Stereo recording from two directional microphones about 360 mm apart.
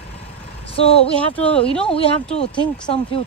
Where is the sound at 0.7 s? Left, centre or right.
Centre.